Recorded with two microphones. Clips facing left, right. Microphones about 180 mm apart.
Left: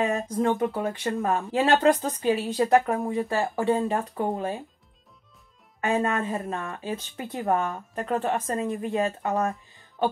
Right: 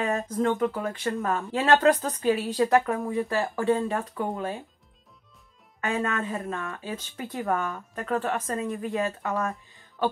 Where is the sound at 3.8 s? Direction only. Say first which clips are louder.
Left 2 dB; 30° left (ahead or behind).